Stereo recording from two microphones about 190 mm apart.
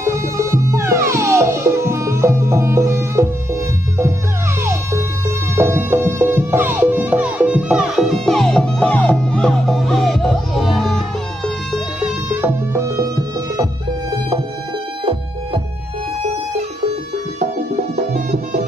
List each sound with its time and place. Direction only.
0.0 s music: 15° right (ahead or behind)
4.6 s music: 15° right (ahead or behind); by 11.0 s centre (ahead or behind)
12.3 s music: 10° right (ahead or behind)
18.1 s music: 55° right (ahead or behind)